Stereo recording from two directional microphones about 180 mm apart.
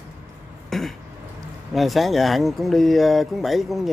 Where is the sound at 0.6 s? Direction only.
Centre (ahead or behind).